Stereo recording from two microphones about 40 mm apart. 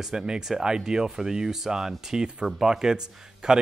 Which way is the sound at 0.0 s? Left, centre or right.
Centre.